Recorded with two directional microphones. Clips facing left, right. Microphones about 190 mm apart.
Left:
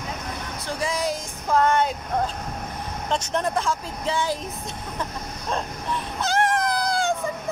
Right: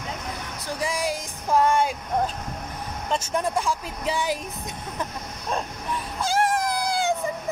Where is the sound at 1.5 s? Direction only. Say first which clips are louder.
Even; 10° right (ahead or behind).